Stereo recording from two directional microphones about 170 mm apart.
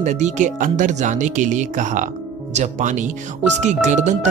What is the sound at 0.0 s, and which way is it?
Speech, 45° right (ahead or behind).